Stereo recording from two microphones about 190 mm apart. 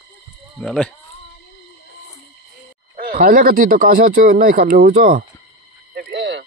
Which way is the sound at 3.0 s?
50° right (ahead or behind).